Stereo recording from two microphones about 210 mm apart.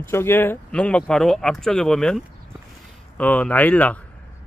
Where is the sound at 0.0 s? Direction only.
10° left (ahead or behind).